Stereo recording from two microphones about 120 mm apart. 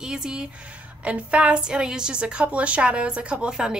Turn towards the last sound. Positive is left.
turn(degrees=-5)  # may be behind; listen again after turning